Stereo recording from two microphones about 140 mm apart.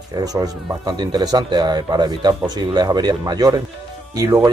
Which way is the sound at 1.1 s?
30° right (ahead or behind).